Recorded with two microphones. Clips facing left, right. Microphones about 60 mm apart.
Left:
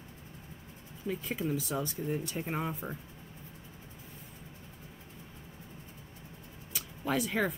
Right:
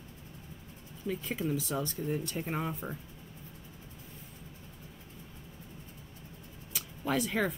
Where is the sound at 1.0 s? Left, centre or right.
Centre.